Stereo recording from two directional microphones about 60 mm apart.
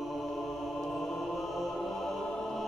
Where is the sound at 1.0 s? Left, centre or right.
Centre.